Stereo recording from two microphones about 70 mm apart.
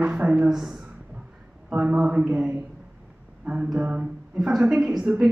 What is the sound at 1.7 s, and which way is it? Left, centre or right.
Speech, centre.